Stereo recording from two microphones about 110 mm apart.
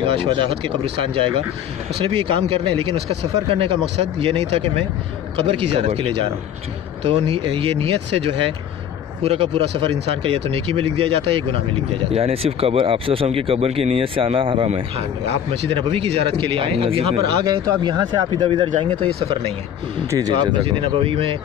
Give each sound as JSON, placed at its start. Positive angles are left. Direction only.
{"t": 0.0, "sound": "speech", "side_deg": -60}
{"t": 15.7, "sound": "speech", "side_deg": -60}
{"t": 17.5, "sound": "speech", "side_deg": -40}
{"t": 20.1, "sound": "speech", "side_deg": -35}